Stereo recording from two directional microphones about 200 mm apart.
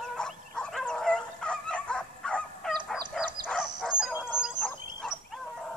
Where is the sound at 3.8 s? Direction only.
Centre (ahead or behind).